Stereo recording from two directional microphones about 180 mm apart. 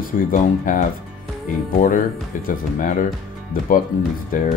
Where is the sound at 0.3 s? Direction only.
45° left (ahead or behind).